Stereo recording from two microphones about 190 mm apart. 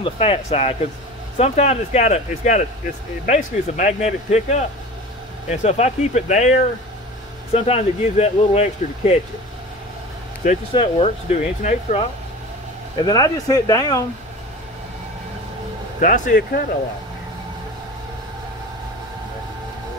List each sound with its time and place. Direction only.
0.0 s speech: 30° left (ahead or behind)
10.7 s speech: 30° left (ahead or behind)
13.0 s speech: 20° left (ahead or behind)
16.0 s speech: 45° left (ahead or behind)